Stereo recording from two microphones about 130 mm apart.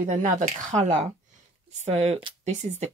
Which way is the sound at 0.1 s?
75° right (ahead or behind).